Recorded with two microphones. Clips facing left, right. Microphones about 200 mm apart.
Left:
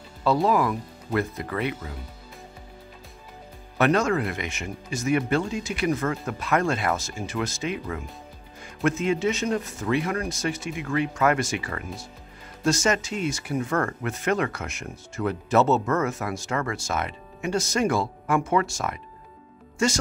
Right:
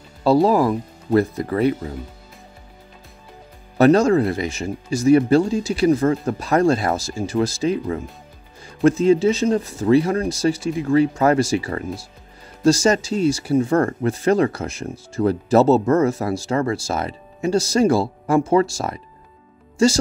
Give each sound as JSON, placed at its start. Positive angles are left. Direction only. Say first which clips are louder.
{"t": 0.2, "sound": "speech", "louder": "right 6 dB", "side_deg": -35}
{"t": 3.7, "sound": "speech", "louder": "right 8 dB", "side_deg": -35}